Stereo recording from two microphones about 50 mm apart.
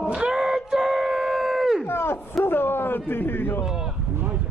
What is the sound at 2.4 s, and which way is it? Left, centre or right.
Speech, left.